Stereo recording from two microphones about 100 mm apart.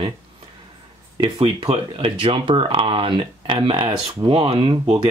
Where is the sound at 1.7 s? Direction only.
65° right (ahead or behind).